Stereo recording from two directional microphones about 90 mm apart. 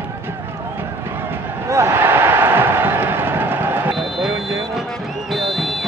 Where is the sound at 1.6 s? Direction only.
30° right (ahead or behind).